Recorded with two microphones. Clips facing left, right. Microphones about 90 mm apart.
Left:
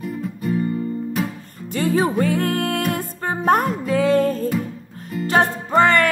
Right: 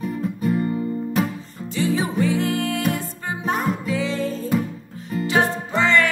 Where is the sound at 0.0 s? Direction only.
Centre (ahead or behind).